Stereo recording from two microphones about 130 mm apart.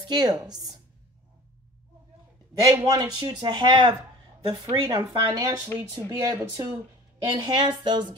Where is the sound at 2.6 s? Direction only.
25° right (ahead or behind).